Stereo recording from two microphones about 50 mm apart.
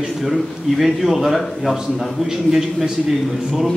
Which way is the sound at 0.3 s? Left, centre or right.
Centre.